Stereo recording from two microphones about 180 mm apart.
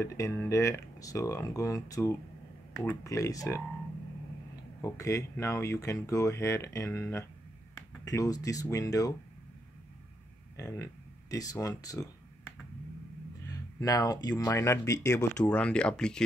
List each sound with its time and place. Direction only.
0.0 s speech: 15° left (ahead or behind)
4.8 s speech: 15° left (ahead or behind)
10.6 s speech: 20° left (ahead or behind)
13.5 s speech: 20° left (ahead or behind)